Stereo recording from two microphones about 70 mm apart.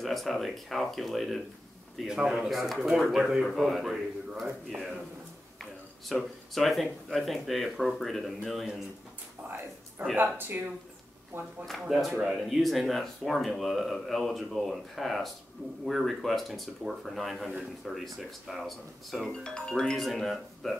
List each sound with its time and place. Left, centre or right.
0.0 s speech: centre
2.0 s speech: centre
10.1 s speech: right
12.0 s speech: centre